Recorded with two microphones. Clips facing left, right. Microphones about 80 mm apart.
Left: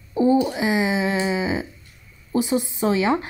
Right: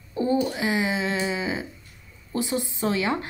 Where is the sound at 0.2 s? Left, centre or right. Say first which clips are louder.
Left 5 dB; centre.